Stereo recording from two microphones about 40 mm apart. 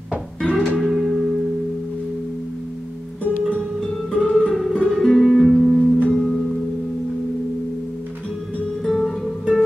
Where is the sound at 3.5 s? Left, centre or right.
Centre.